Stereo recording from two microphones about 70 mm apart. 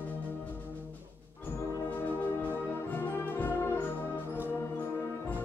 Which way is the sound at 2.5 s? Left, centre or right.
Left.